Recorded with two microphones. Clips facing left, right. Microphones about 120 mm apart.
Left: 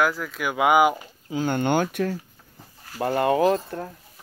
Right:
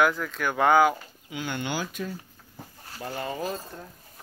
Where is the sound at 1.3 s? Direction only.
45° left (ahead or behind); by 3.9 s 70° left (ahead or behind).